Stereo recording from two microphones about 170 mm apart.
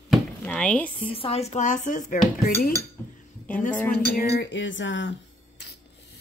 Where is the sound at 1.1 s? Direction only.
35° left (ahead or behind).